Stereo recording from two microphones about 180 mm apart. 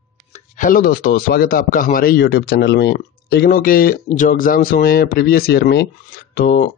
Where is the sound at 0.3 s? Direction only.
45° left (ahead or behind).